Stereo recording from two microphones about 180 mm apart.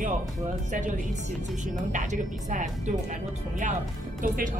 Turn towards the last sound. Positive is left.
turn(degrees=-50)  # may be behind; listen again after turning